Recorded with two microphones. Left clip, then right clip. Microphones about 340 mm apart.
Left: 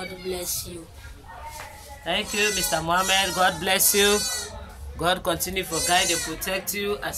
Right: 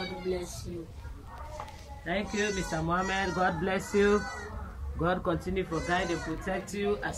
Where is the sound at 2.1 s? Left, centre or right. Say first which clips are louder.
Left 7 dB; left.